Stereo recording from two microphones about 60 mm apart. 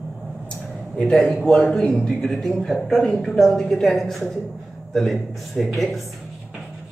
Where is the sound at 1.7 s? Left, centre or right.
Centre.